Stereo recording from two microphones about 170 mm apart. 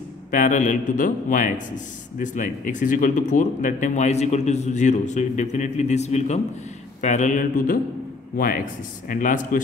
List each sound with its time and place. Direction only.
0.3 s speech: 50° left (ahead or behind)